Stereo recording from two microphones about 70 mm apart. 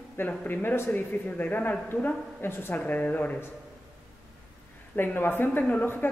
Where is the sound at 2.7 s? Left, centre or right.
Left.